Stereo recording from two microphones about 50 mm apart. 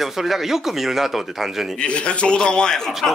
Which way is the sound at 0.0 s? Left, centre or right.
Centre.